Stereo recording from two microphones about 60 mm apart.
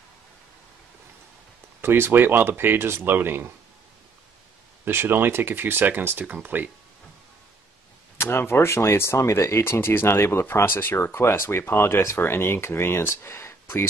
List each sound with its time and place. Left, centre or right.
1.8 s speech: right
4.8 s speech: right
8.2 s speech: left